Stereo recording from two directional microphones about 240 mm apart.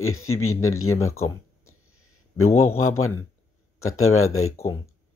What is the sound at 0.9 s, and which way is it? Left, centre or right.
Speech, centre.